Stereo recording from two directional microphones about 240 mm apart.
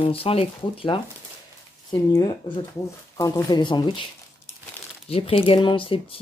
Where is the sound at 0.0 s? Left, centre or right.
Left.